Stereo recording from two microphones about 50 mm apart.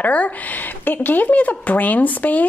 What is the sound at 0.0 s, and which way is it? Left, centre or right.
Speech, left.